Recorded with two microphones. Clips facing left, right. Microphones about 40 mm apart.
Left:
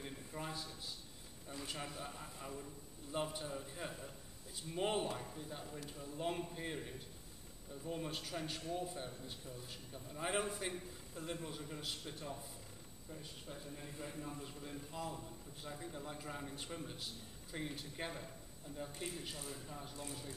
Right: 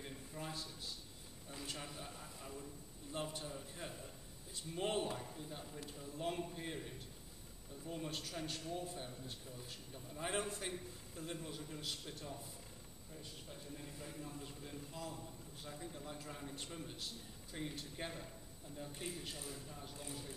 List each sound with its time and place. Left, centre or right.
0.3 s a man's voice: centre
14.4 s a man's voice: centre